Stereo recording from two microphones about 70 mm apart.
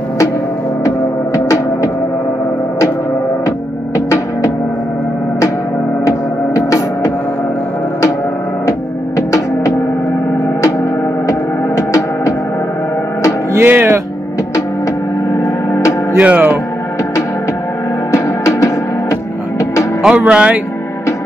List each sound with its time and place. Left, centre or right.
0.8 s gong: left
3.4 s music: left
6.0 s music: left
8.6 s music: left
10.6 s gong: left
13.6 s music: right
15.3 s music: left
16.2 s music: right
18.1 s music: left
20.2 s speech: centre